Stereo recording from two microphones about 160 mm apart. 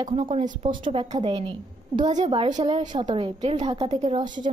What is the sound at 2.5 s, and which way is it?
A woman's voice, 45° right (ahead or behind).